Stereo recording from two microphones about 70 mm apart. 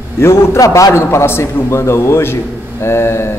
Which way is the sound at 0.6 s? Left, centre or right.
Left.